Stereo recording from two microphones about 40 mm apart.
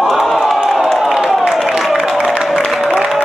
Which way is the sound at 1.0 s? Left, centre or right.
Centre.